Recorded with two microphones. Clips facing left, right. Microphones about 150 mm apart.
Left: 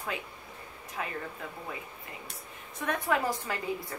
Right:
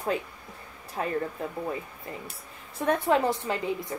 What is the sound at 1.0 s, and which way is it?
Speech, 35° right (ahead or behind).